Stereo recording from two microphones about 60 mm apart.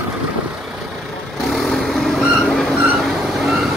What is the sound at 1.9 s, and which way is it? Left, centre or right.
Vehicle, centre.